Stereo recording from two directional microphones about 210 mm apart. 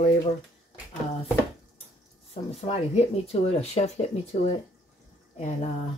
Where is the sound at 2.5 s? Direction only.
30° left (ahead or behind).